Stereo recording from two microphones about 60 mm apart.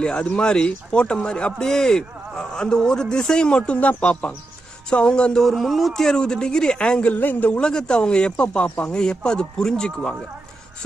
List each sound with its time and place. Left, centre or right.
0.0 s a man's voice: centre
5.4 s a man's voice: centre
7.2 s a man's voice: left
7.5 s a man's voice: centre